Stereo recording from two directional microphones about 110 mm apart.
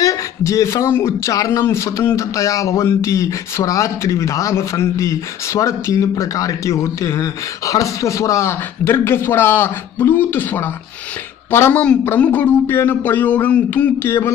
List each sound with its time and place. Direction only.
0.0 s speech: 30° left (ahead or behind)